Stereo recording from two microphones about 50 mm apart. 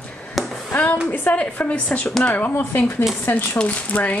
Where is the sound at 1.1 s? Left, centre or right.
Left.